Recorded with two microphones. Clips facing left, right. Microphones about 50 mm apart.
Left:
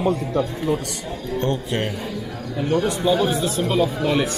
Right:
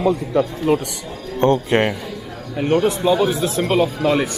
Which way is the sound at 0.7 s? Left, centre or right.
Right.